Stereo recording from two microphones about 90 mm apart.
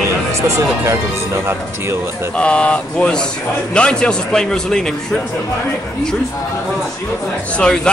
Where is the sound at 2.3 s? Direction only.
10° left (ahead or behind).